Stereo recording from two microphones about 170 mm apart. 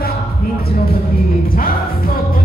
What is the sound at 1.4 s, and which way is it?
Music, 60° left (ahead or behind).